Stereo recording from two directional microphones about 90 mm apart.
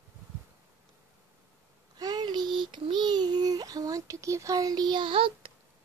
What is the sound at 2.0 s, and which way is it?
Child singing, 55° right (ahead or behind).